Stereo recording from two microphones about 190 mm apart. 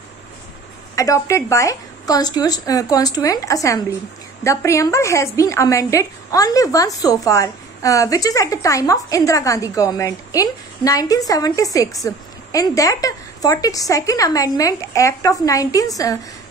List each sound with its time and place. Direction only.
0.9 s a woman's voice: 15° left (ahead or behind)